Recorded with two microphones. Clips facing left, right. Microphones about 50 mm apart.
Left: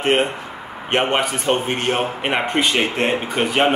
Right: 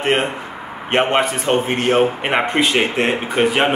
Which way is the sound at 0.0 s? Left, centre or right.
Centre.